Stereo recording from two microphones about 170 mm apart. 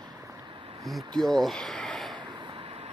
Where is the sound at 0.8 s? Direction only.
Centre (ahead or behind).